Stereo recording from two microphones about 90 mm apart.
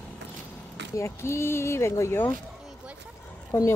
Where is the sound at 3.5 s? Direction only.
30° left (ahead or behind).